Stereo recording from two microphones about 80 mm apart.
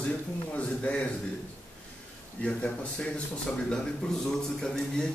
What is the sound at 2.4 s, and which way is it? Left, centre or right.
A man's voice, centre.